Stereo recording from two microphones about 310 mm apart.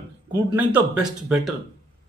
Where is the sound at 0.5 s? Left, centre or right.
Centre.